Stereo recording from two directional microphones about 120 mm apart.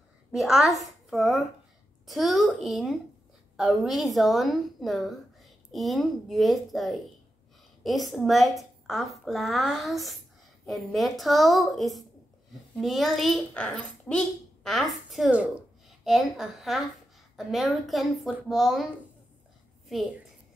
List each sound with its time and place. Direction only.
0.3 s a woman's voice: 5° right (ahead or behind)